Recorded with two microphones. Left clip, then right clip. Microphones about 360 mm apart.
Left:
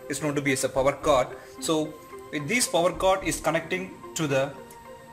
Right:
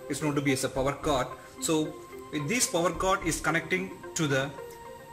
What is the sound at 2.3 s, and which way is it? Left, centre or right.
Speech, centre.